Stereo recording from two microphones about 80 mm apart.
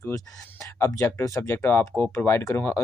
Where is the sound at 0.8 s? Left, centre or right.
Left.